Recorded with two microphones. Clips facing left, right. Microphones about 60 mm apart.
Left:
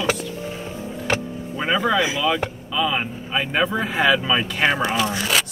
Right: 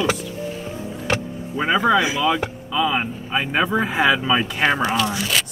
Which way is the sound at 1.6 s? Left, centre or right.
Centre.